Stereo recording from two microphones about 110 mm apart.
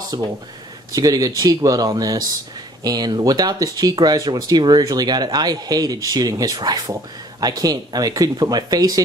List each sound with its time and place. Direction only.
0.1 s speech: 40° right (ahead or behind)